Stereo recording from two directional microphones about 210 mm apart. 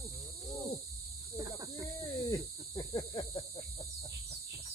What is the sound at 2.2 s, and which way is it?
Cricket, 15° left (ahead or behind).